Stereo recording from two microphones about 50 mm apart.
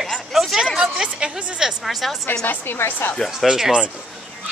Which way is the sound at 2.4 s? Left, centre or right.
Left.